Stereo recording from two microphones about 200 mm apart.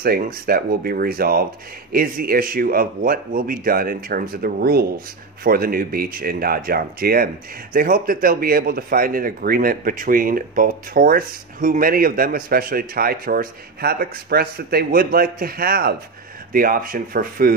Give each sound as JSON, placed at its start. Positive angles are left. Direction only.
{"t": 0.0, "sound": "speech", "side_deg": -50}